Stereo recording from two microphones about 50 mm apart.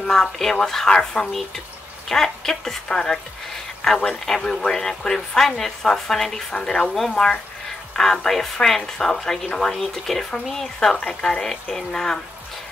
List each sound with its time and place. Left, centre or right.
0.0 s a woman's voice: centre
6.5 s a woman's voice: centre
11.0 s speech: left
11.2 s a woman's voice: centre